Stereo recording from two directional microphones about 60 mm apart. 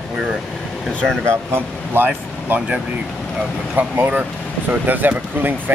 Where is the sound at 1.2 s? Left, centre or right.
Right.